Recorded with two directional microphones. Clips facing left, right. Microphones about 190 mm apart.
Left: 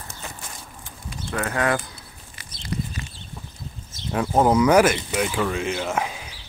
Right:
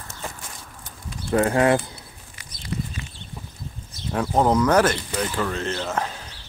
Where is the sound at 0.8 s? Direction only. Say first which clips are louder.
Right 4 dB; 30° right (ahead or behind).